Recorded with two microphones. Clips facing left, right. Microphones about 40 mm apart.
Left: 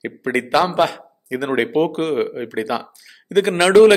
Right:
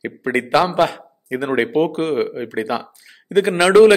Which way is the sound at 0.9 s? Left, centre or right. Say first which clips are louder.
Right 1 dB; right.